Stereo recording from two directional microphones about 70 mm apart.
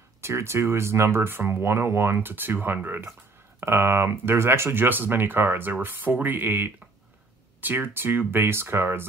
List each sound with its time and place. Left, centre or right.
0.2 s speech: right